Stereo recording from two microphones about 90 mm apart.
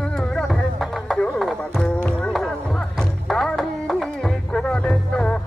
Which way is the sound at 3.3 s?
5° left (ahead or behind).